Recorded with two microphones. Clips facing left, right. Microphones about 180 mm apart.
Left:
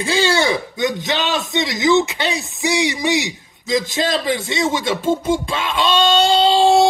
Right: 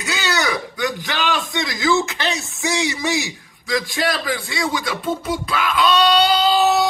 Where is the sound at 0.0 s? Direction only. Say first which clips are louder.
Left 6 dB; 30° left (ahead or behind).